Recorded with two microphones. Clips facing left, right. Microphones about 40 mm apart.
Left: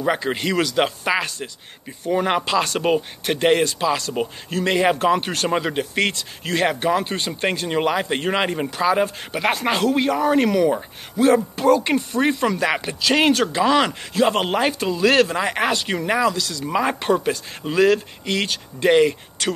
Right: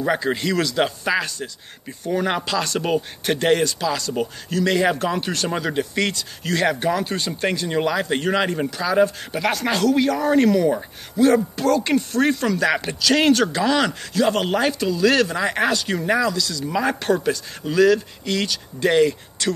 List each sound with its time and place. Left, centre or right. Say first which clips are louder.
0.2 s speech: even; left
15.7 s speech: right 1 dB; left
16.3 s speech: left 1 dB; left
16.8 s speech: even; left